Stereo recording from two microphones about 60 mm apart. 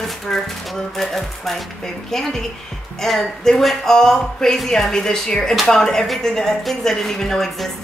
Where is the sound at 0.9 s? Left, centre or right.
Centre.